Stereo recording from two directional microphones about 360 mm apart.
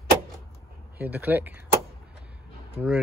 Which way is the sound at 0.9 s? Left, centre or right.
Centre.